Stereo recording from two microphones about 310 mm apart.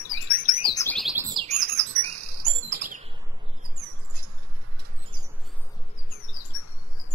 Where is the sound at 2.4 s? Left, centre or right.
Right.